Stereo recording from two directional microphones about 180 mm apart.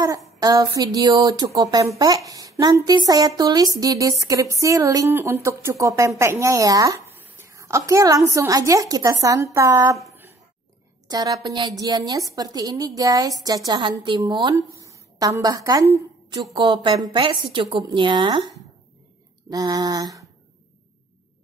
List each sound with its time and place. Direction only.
0.4 s a woman's voice: 20° right (ahead or behind)
11.1 s a woman's voice: 20° right (ahead or behind)
19.5 s speech: 20° right (ahead or behind)